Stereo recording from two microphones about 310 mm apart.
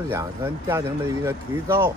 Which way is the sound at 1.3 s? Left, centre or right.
Centre.